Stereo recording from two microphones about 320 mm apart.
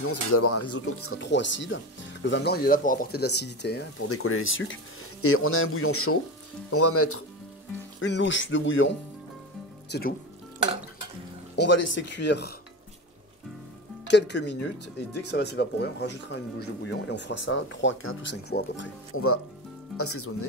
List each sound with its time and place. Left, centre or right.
0.0 s speech: left
11.5 s speech: left
14.0 s speech: left